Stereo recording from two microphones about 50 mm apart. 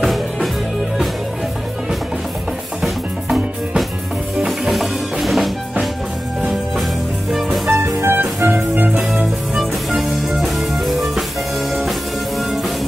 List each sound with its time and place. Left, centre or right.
0.0 s music: centre
4.4 s music: centre
7.2 s music: centre
8.0 s music: right
8.5 s music: right
9.6 s music: centre
12.4 s music: centre